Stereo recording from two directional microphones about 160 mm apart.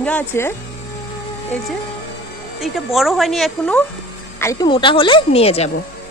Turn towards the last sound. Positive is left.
turn(degrees=40)  # may be behind; listen again after turning